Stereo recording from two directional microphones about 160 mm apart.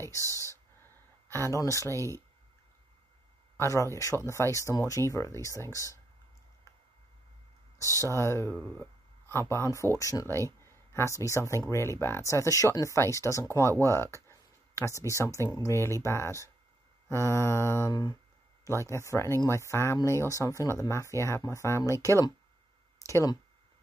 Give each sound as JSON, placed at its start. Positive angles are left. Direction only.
{"t": 0.2, "sound": "speech", "side_deg": -20}
{"t": 1.3, "sound": "speech", "side_deg": 20}
{"t": 1.9, "sound": "speech", "side_deg": -20}
{"t": 3.5, "sound": "speech", "side_deg": 20}
{"t": 7.8, "sound": "speech", "side_deg": -20}
{"t": 8.2, "sound": "speech", "side_deg": 15}
{"t": 14.8, "sound": "speech", "side_deg": 20}